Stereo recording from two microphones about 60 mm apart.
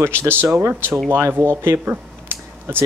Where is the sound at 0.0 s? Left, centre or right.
Right.